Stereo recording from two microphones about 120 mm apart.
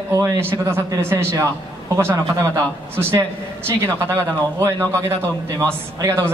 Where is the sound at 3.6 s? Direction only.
25° right (ahead or behind).